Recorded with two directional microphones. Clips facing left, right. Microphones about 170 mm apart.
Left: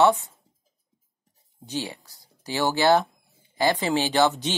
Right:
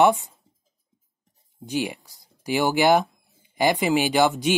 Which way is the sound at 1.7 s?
10° right (ahead or behind).